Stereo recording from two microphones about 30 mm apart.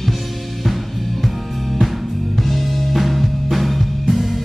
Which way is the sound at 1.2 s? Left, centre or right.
Centre.